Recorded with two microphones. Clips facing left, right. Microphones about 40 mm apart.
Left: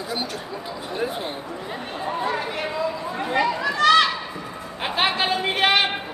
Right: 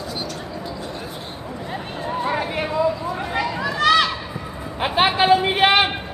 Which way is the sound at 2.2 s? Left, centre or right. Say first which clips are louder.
Right 4 dB; centre.